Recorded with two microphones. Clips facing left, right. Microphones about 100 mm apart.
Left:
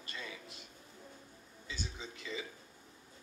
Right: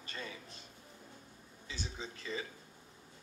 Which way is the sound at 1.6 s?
35° right (ahead or behind).